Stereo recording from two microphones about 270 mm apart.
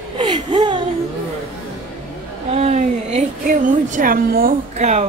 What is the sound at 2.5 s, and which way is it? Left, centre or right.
A woman's voice, right.